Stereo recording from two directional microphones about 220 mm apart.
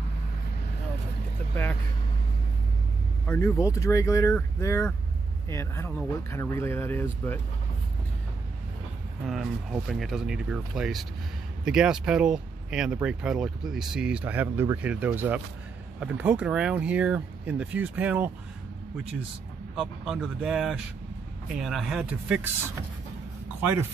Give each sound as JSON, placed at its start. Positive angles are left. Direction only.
{"t": 1.5, "sound": "speech", "side_deg": 10}
{"t": 3.3, "sound": "speech", "side_deg": 10}
{"t": 9.2, "sound": "speech", "side_deg": 0}
{"t": 19.7, "sound": "speech", "side_deg": 0}